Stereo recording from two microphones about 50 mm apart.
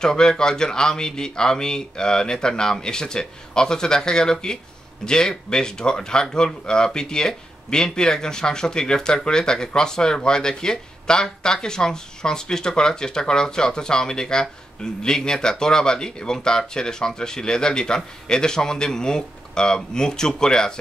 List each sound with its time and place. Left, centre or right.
0.0 s speech: centre